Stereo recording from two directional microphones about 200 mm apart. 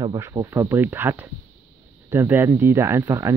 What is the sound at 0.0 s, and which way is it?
Speech, 15° right (ahead or behind).